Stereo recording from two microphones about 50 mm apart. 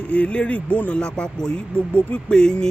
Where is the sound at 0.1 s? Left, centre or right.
Left.